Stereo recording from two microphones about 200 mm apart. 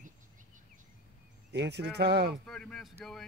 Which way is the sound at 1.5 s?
60° right (ahead or behind).